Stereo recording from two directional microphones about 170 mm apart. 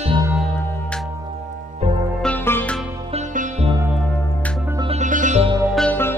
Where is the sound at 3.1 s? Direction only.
45° right (ahead or behind).